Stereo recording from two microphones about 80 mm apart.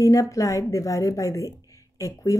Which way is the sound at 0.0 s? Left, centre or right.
Left.